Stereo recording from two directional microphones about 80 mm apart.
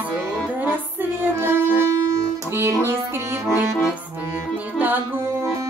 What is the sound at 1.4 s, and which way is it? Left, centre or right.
Music, right.